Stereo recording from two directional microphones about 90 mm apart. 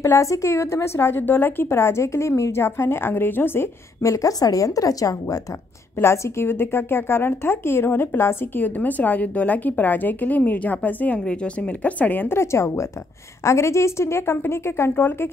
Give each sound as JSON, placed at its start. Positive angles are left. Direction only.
{"t": 0.0, "sound": "a woman's voice", "side_deg": 35}